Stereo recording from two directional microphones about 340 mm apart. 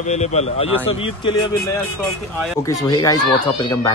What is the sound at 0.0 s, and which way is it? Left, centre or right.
Speech, centre.